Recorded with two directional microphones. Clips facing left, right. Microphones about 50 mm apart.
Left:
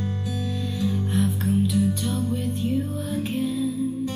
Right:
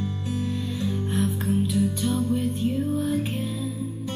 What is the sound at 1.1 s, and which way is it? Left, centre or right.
Music, centre.